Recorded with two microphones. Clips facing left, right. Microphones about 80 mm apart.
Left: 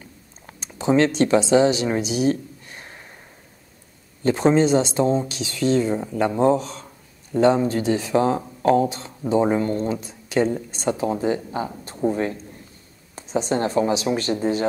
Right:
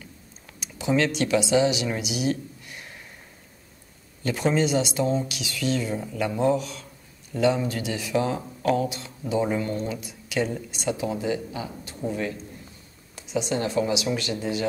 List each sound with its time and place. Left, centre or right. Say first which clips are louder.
0.5 s speech: left 5 dB; left
4.2 s speech: left 6 dB; left